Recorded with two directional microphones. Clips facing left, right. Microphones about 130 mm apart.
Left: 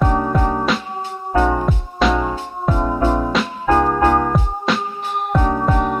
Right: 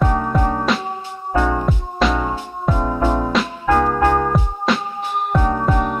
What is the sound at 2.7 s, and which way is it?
Music, 15° left (ahead or behind).